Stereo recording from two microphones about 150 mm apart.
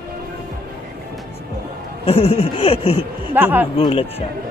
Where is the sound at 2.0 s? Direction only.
40° left (ahead or behind).